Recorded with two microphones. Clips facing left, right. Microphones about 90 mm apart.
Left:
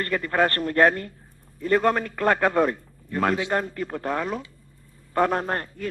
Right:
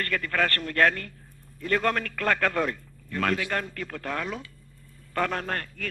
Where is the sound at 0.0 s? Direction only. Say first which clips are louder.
Left 4 dB; 20° left (ahead or behind).